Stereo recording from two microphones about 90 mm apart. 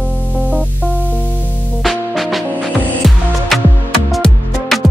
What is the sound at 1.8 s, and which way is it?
Music, centre (ahead or behind).